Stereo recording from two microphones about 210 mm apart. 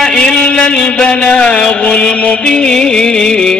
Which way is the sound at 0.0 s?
5° left (ahead or behind).